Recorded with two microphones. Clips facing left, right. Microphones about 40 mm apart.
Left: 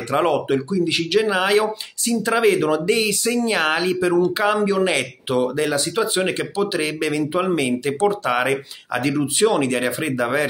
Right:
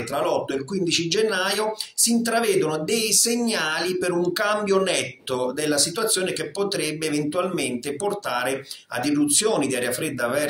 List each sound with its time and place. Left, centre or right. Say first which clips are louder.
0.1 s speech: left 5 dB; left
0.7 s speech: left 3 dB; centre; by 10.4 s left